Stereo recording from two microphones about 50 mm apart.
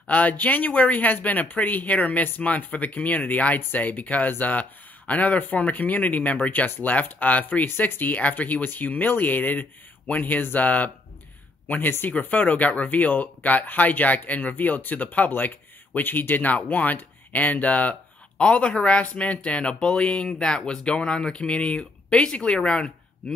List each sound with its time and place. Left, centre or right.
0.0 s speech: left